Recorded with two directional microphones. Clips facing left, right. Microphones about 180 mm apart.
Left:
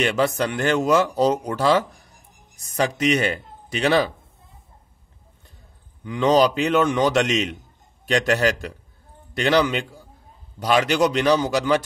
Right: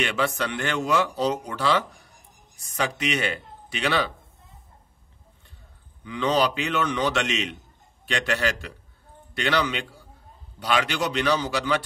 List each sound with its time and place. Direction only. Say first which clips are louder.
0.0 s a man's voice: left 5 dB; 40° left (ahead or behind)
6.0 s a man's voice: left 6 dB; 45° left (ahead or behind)